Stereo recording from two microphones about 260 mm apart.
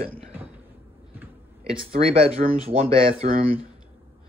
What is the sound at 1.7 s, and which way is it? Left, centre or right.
Speech, right.